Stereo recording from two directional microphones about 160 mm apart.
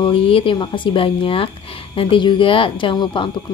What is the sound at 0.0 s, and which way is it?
A woman's voice, 35° left (ahead or behind).